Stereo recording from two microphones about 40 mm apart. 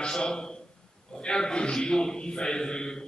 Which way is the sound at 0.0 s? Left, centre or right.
Left.